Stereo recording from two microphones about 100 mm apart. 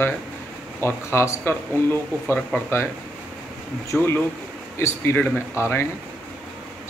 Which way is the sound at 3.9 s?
5° left (ahead or behind).